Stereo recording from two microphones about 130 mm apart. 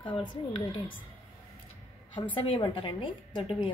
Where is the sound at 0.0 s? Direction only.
40° left (ahead or behind).